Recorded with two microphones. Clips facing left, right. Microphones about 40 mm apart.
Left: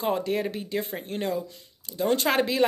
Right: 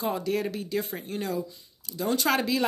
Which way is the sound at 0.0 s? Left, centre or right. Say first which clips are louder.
Left 2 dB; left.